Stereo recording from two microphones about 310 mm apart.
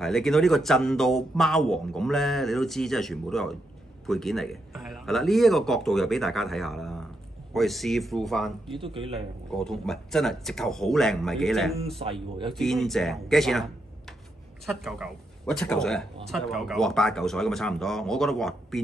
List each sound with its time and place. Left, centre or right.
0.0 s speech: centre
8.8 s speech: centre
9.5 s speech: centre
12.0 s speech: centre
12.5 s speech: centre